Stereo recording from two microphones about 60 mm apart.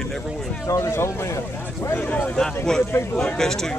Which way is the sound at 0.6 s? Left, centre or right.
Left.